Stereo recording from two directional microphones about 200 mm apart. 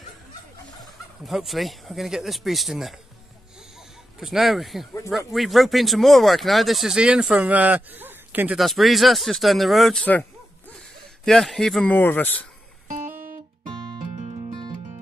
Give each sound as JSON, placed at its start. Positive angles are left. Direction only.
{"t": 1.2, "sound": "speech", "side_deg": 0}
{"t": 4.2, "sound": "speech", "side_deg": 0}
{"t": 11.2, "sound": "speech", "side_deg": 0}
{"t": 13.9, "sound": "music", "side_deg": -40}